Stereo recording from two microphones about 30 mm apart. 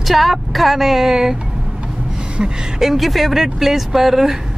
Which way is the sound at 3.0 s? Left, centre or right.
Centre.